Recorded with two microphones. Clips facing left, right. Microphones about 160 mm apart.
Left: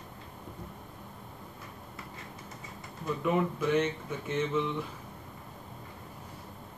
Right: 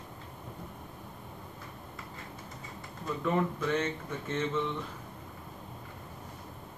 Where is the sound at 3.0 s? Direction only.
10° left (ahead or behind).